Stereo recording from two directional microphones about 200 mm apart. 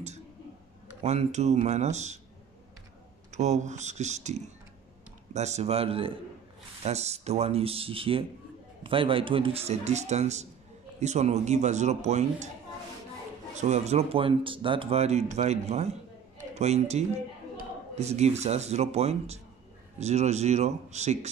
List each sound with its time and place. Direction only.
1.0 s speech: 35° right (ahead or behind)
3.3 s speech: 35° right (ahead or behind)
13.6 s speech: 35° right (ahead or behind)